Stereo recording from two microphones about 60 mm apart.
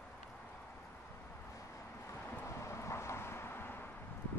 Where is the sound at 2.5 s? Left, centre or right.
Left.